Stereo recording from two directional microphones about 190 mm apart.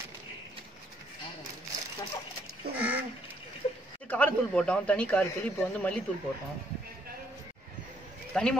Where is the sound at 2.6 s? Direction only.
55° right (ahead or behind).